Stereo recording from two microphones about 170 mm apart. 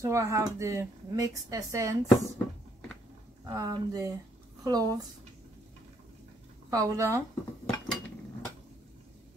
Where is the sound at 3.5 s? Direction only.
20° right (ahead or behind).